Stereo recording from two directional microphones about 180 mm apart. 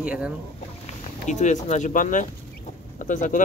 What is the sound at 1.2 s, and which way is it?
Speech, 40° left (ahead or behind).